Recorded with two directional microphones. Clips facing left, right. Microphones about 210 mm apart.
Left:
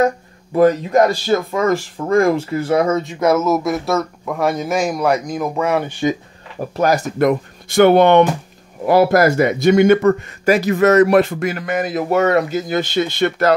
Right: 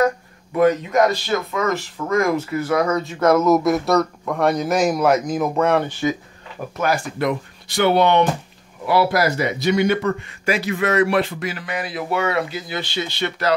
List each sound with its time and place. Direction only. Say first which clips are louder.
0.6 s speech: left 3 dB; 35° left (ahead or behind); by 5.9 s 5° left (ahead or behind)
6.8 s speech: left 6 dB; 40° left (ahead or behind)